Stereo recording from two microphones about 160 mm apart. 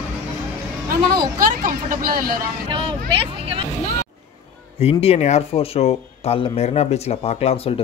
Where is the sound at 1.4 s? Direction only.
60° right (ahead or behind).